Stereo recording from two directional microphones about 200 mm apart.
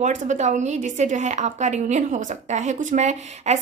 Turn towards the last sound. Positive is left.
turn(degrees=-35)  # may be behind; listen again after turning